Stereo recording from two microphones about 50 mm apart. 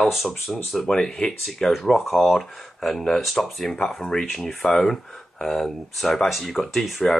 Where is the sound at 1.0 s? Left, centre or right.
Centre.